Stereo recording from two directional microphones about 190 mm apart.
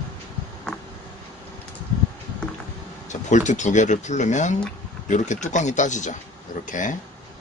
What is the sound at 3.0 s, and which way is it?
Speech, 40° left (ahead or behind).